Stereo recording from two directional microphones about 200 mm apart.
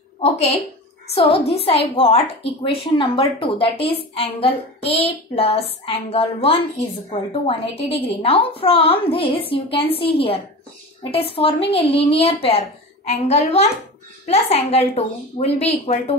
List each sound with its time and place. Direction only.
0.2 s a woman's voice: 30° left (ahead or behind)